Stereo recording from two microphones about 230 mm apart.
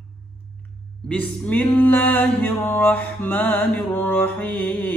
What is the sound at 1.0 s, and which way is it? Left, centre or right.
Male singing, centre.